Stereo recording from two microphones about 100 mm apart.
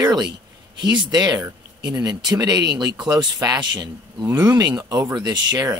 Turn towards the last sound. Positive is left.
turn(degrees=-40)  # may be behind; listen again after turning